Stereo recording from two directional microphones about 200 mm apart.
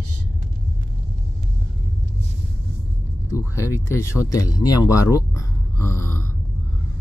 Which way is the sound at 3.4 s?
15° left (ahead or behind).